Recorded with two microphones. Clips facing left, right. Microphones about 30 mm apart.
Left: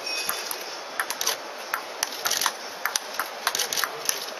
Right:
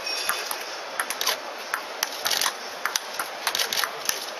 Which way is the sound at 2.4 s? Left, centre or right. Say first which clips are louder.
Even; centre.